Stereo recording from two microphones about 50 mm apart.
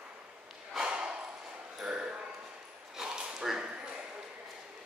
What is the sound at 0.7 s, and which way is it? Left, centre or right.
Snort, centre.